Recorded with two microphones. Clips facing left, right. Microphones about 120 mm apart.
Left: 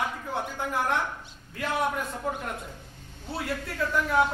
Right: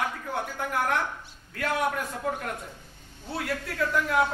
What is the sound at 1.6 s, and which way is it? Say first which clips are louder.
Speech: right 1 dB; 5° left (ahead or behind).